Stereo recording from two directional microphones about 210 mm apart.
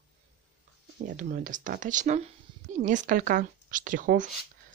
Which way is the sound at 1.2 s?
40° right (ahead or behind).